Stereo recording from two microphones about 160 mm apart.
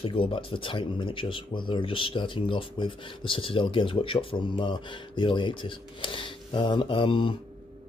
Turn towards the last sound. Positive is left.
turn(degrees=30)  # may be behind; listen again after turning